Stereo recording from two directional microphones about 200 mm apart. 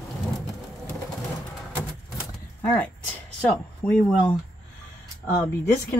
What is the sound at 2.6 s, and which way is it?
Speech, 10° left (ahead or behind).